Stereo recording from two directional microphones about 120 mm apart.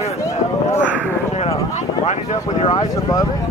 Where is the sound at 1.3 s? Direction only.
70° left (ahead or behind).